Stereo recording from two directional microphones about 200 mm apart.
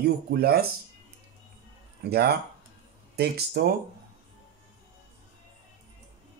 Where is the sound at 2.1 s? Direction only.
55° right (ahead or behind).